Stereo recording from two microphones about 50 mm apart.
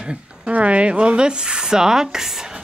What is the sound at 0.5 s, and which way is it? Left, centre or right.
Rub, right.